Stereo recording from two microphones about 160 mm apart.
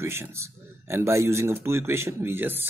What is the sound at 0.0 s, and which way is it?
A man's voice, 15° right (ahead or behind).